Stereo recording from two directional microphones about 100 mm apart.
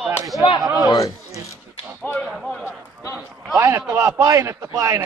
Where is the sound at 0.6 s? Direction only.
30° right (ahead or behind).